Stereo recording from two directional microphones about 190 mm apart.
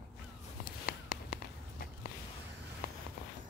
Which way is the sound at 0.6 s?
50° left (ahead or behind).